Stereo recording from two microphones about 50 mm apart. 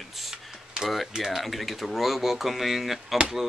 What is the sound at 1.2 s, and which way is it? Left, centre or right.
Speech, centre.